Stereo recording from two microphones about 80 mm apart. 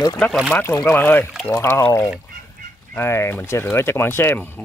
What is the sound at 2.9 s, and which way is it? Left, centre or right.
Speech, left.